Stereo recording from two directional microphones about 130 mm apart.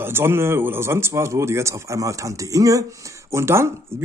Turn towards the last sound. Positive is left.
turn(degrees=-20)  # may be behind; listen again after turning